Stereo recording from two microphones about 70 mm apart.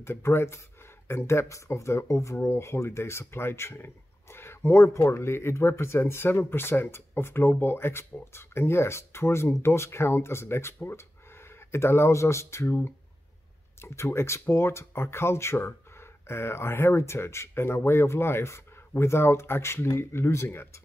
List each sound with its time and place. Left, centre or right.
0.0 s speech: left